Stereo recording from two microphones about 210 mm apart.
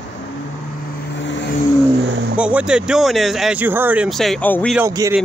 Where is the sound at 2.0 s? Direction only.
60° right (ahead or behind).